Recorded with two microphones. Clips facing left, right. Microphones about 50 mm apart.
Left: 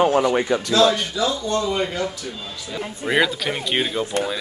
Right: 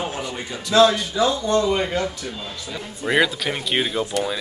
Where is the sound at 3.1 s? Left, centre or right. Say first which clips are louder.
Even; centre.